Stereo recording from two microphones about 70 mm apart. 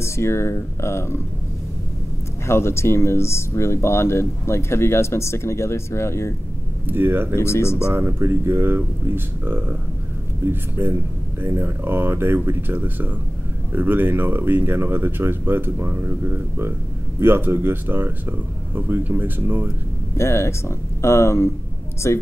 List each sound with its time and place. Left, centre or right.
0.0 s speech: left
2.4 s speech: left
6.9 s speech: right
7.4 s speech: left
7.9 s speech: right
20.2 s speech: left